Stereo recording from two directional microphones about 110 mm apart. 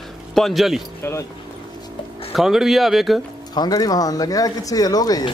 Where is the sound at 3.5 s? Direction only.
35° left (ahead or behind).